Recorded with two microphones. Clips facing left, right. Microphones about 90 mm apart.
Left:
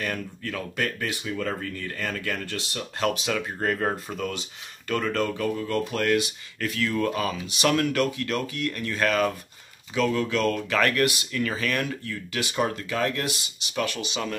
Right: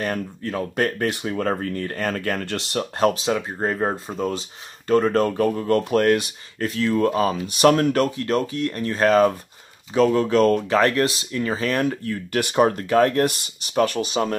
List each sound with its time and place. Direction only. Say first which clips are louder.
0.0 s speech: right 5 dB; 35° right (ahead or behind)
2.4 s speech: right 7 dB; 70° right (ahead or behind)
2.8 s speech: right 7 dB; 35° right (ahead or behind)
6.6 s speech: right 5 dB; 30° right (ahead or behind)
7.3 s speech: right 7 dB; 45° right (ahead or behind)